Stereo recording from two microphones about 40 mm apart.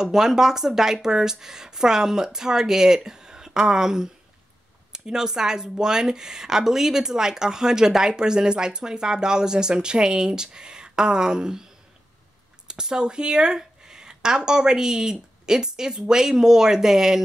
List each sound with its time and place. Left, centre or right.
0.0 s speech: centre
12.6 s speech: centre